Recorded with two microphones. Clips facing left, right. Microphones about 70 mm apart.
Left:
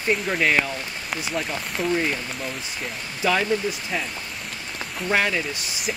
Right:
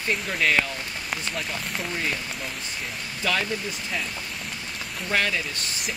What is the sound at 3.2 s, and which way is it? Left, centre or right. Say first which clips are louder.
Speech: left 5 dB; centre.